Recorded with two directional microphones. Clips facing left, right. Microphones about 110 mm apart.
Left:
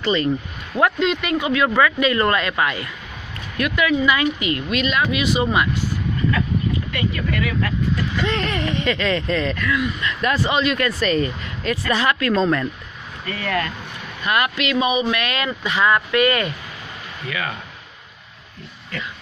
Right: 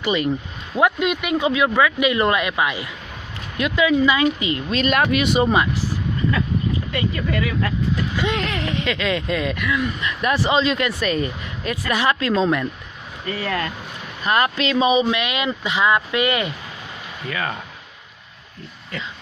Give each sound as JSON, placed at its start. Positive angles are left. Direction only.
{"t": 0.0, "sound": "speech", "side_deg": -10}
{"t": 4.8, "sound": "speech", "side_deg": -55}
{"t": 5.4, "sound": "speech", "side_deg": -25}
{"t": 6.9, "sound": "speech", "side_deg": -25}
{"t": 8.3, "sound": "speech", "side_deg": -5}
{"t": 10.4, "sound": "speech", "side_deg": -25}
{"t": 11.0, "sound": "speech", "side_deg": -10}
{"t": 12.4, "sound": "speech", "side_deg": -10}
{"t": 13.2, "sound": "speech", "side_deg": -25}
{"t": 14.2, "sound": "speech", "side_deg": -35}
{"t": 17.3, "sound": "speech", "side_deg": -30}